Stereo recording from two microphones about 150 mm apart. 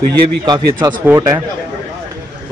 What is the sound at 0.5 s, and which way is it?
Speech, 30° right (ahead or behind).